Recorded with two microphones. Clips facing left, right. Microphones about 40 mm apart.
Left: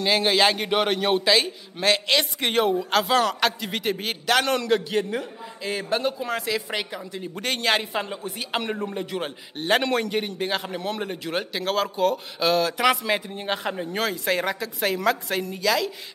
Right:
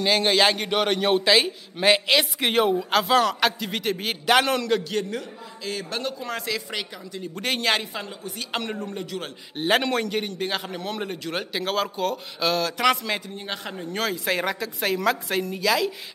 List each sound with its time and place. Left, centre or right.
0.0 s a man's voice: centre
4.3 s a man's voice: centre
4.6 s a man's voice: centre
6.7 s a man's voice: centre
7.4 s a man's voice: centre
7.8 s a man's voice: left
8.5 s a man's voice: centre
9.0 s a man's voice: left
9.6 s a man's voice: centre
13.4 s a man's voice: centre
13.8 s a man's voice: centre